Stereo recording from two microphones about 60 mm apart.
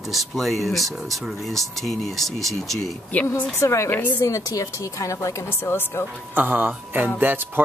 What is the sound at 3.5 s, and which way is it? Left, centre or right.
A woman's voice, left.